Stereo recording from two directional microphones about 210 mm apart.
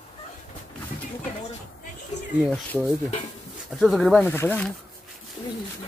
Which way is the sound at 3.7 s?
Centre (ahead or behind).